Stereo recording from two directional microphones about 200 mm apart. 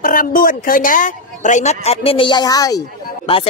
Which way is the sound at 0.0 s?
45° left (ahead or behind).